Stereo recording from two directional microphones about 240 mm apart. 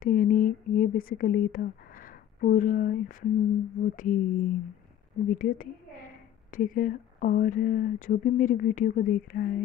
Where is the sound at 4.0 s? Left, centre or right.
Left.